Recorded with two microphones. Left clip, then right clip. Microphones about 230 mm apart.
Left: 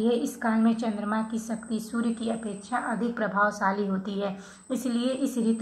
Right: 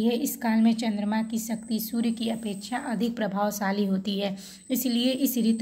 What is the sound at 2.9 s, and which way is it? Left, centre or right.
A woman's voice, right.